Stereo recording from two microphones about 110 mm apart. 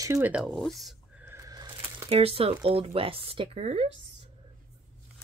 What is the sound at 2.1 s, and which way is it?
Speech, 65° right (ahead or behind).